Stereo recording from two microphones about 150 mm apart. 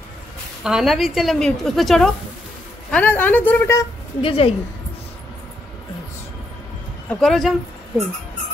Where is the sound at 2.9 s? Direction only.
10° left (ahead or behind).